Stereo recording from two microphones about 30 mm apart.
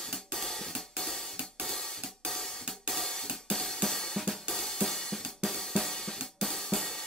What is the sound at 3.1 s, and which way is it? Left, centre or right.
Hi-hat, left.